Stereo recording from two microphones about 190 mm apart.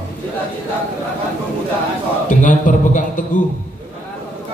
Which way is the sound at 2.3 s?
40° left (ahead or behind).